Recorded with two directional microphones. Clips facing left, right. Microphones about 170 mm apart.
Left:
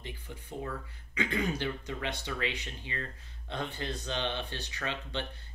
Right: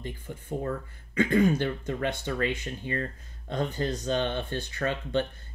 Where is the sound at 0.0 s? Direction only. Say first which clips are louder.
Right 6 dB; 50° right (ahead or behind).